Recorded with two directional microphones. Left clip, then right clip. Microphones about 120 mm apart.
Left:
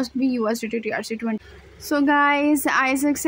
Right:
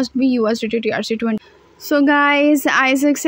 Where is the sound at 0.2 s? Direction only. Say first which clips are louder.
Right 6 dB; 15° right (ahead or behind).